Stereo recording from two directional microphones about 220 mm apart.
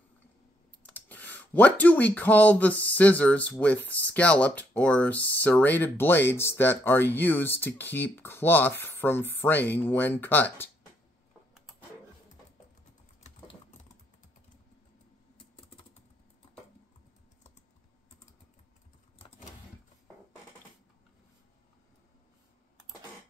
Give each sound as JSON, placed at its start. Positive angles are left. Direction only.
{"t": 0.8, "sound": "speech", "side_deg": 5}
{"t": 15.3, "sound": "typing", "side_deg": 25}